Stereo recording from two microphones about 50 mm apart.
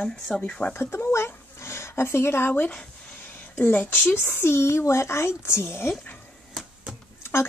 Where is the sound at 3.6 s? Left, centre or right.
Left.